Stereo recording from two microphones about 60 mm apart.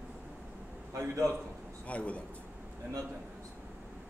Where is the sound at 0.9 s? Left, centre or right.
Right.